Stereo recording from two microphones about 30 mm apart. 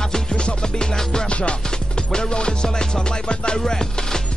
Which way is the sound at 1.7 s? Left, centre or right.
Left.